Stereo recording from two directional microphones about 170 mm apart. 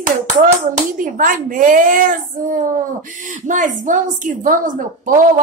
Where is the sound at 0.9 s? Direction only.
50° right (ahead or behind).